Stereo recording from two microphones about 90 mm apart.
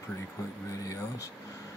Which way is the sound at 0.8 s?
35° left (ahead or behind).